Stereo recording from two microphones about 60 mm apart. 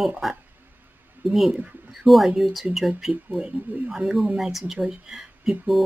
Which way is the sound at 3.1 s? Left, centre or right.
Centre.